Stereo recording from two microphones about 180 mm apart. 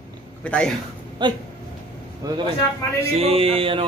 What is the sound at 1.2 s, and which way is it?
Speech, 25° right (ahead or behind).